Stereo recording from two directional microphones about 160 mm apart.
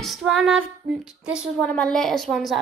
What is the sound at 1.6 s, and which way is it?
Child singing, 5° left (ahead or behind).